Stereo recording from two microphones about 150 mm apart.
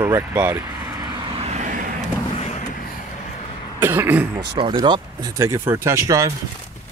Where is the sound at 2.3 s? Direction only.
45° left (ahead or behind).